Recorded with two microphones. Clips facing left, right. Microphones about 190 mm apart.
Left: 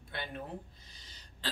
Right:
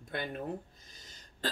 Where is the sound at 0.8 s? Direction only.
45° right (ahead or behind).